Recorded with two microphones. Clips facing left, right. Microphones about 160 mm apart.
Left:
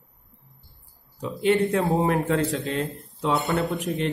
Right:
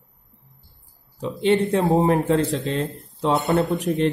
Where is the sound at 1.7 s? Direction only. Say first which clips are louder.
Right 4 dB; 25° right (ahead or behind).